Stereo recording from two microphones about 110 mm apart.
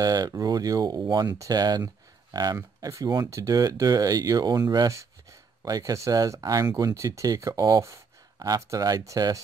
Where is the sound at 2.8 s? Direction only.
35° right (ahead or behind).